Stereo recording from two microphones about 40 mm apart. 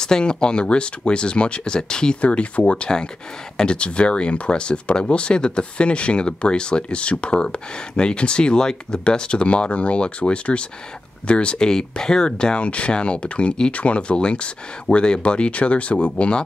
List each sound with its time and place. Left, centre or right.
0.0 s speech: centre
2.2 s speech: left
2.6 s speech: left
11.6 s speech: centre